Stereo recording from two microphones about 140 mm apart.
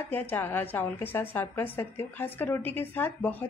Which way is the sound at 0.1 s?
15° left (ahead or behind).